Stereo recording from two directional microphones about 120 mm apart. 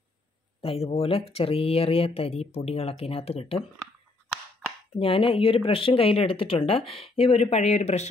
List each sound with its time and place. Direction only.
0.6 s speech: 55° left (ahead or behind)
4.9 s speech: 50° left (ahead or behind); by 8.1 s 70° left (ahead or behind)